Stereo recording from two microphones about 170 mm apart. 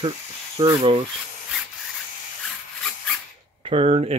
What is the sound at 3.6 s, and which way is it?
Speech, 35° right (ahead or behind).